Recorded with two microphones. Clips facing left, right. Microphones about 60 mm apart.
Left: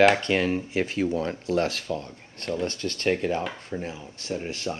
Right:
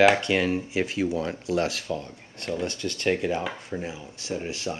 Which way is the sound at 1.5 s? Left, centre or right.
Left.